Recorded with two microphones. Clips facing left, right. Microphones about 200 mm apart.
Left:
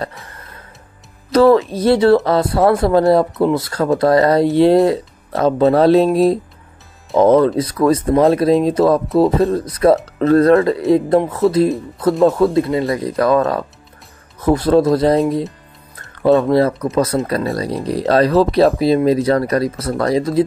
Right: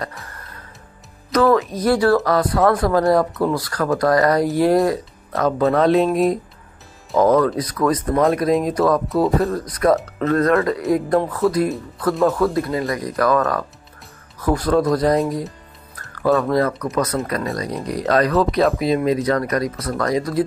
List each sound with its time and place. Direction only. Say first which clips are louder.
1.3 s speech: left 5 dB; 30° left (ahead or behind)